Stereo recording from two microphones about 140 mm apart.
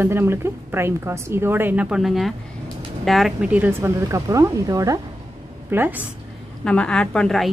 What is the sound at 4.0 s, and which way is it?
A woman's voice, 20° right (ahead or behind).